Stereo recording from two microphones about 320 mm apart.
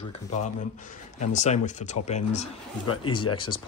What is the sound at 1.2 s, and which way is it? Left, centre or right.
Speech, left.